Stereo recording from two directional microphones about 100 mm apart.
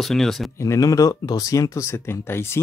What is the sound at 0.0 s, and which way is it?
Speech, centre (ahead or behind).